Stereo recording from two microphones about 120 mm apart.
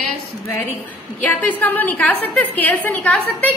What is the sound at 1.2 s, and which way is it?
A woman's voice, 15° left (ahead or behind).